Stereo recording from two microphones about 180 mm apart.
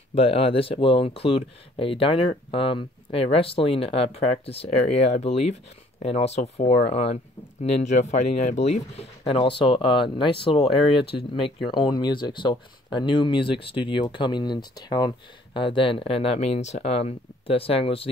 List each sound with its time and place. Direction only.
0.1 s speech: 30° left (ahead or behind)
9.2 s speech: 30° left (ahead or behind)